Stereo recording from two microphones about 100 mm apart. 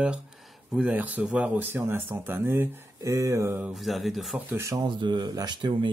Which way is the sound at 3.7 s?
Centre (ahead or behind).